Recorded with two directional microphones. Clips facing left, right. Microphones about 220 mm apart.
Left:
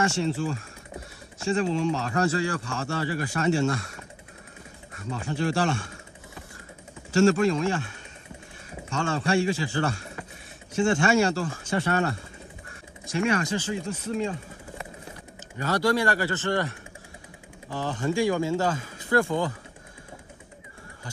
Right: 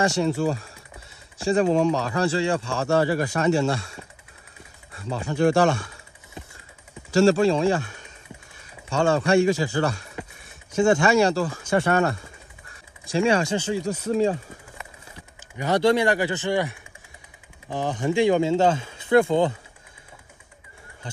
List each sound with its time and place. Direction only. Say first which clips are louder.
0.0 s speech: right 4 dB; 40° right (ahead or behind)
2.1 s speech: right 3 dB; 30° right (ahead or behind)
5.3 s speech: right 7 dB; 45° right (ahead or behind)
7.1 s speech: right 3 dB; 35° right (ahead or behind)
8.9 s speech: right 6 dB; 40° right (ahead or behind)
11.7 s speech: right 5 dB; 50° right (ahead or behind)
13.0 s speech: right 4 dB; 30° right (ahead or behind)
15.5 s speech: right 4 dB; 20° right (ahead or behind)